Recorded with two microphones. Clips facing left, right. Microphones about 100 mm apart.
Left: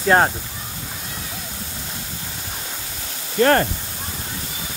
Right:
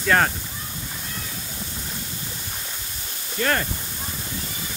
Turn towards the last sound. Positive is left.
turn(degrees=45)  # may be behind; listen again after turning